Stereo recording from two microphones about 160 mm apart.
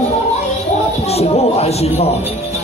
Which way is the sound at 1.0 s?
40° left (ahead or behind).